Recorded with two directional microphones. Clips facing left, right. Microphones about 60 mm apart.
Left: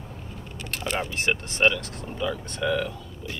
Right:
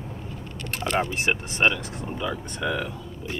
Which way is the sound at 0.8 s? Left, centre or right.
Right.